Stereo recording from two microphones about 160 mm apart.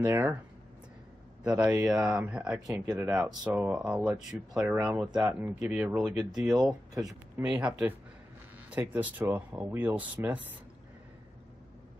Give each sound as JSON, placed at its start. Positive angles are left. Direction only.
{"t": 0.0, "sound": "speech", "side_deg": -15}
{"t": 1.4, "sound": "speech", "side_deg": -10}
{"t": 2.7, "sound": "speech", "side_deg": -20}
{"t": 3.4, "sound": "speech", "side_deg": -10}
{"t": 6.6, "sound": "speech", "side_deg": -25}
{"t": 7.3, "sound": "speech", "side_deg": -10}